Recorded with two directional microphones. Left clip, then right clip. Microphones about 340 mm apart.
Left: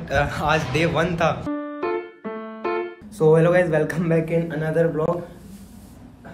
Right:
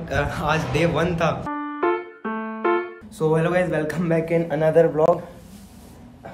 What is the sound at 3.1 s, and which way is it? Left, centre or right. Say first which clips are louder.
A man's voice: left 4 dB; centre.